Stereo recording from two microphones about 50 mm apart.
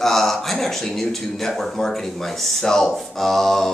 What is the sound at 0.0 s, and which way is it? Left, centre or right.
Speech, centre.